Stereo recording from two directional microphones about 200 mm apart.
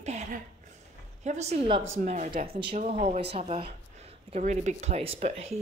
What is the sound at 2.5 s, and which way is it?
Speech, 25° right (ahead or behind).